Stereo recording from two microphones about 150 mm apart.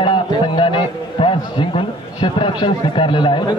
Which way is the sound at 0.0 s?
35° left (ahead or behind).